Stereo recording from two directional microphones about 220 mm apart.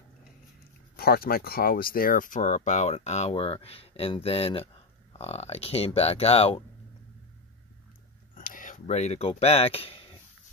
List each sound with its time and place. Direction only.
0.9 s speech: 45° left (ahead or behind); by 6.6 s 25° left (ahead or behind)
8.4 s speech: 35° left (ahead or behind)